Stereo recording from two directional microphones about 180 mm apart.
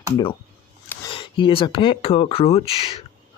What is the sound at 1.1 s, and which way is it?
Speech, 25° left (ahead or behind).